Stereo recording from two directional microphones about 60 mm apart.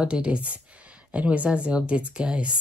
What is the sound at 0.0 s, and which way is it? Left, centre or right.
Speech, centre.